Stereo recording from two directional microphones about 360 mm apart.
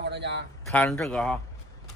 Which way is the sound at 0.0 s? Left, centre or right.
Right.